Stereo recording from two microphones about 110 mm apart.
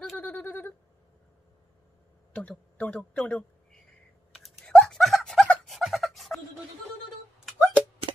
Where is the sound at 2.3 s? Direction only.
10° left (ahead or behind).